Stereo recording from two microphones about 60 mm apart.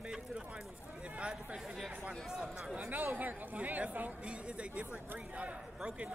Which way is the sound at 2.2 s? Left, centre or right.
Centre.